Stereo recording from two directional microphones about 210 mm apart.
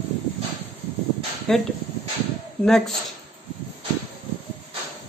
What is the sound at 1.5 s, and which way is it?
Speech, 5° left (ahead or behind).